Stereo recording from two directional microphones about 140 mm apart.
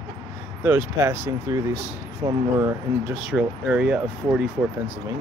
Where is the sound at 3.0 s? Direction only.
5° right (ahead or behind).